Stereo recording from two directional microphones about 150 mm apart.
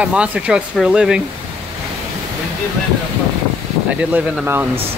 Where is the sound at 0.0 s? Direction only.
10° right (ahead or behind).